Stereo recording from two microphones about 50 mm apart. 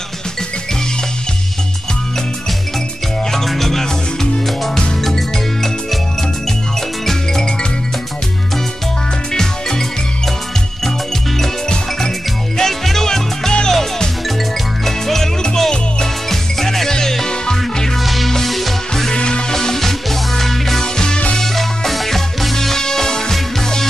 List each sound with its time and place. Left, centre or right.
3.3 s music: centre
9.3 s music: centre
11.3 s music: centre
18.0 s music: centre
19.0 s music: centre
21.4 s music: centre